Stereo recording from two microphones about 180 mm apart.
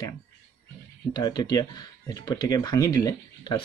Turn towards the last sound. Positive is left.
turn(degrees=20)  # may be behind; listen again after turning